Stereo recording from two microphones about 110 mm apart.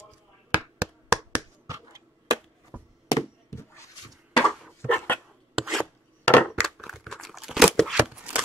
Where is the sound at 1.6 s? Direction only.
30° right (ahead or behind).